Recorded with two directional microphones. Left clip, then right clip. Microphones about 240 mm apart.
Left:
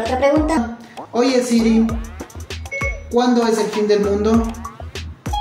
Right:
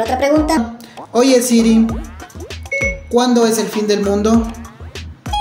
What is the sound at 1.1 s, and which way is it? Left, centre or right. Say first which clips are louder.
Speech: right 5 dB; right.